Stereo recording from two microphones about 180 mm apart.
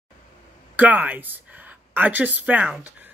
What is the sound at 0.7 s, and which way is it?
Speech, 10° right (ahead or behind).